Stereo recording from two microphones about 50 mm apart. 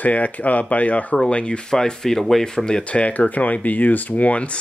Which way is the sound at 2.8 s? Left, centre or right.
Left.